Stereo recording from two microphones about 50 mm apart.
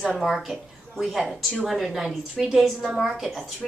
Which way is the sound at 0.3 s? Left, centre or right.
Centre.